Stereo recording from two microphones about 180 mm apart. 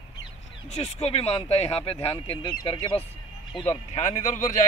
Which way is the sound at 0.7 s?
35° left (ahead or behind).